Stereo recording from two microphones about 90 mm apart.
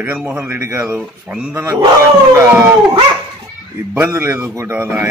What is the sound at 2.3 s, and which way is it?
Speech, 25° right (ahead or behind).